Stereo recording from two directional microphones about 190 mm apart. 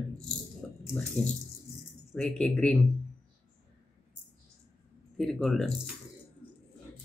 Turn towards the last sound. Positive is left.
turn(degrees=0)  # may be behind; listen again after turning